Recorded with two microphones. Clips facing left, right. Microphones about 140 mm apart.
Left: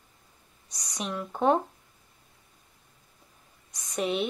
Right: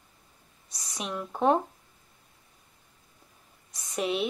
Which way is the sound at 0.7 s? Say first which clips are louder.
Even; 30° right (ahead or behind).